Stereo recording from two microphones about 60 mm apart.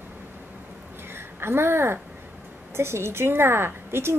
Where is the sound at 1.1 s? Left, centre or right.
Right.